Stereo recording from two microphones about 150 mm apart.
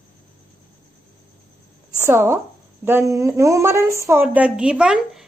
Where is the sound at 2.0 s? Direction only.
15° right (ahead or behind).